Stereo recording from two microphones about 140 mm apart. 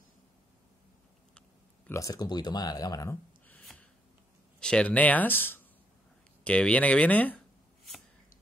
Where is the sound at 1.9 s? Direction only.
25° left (ahead or behind).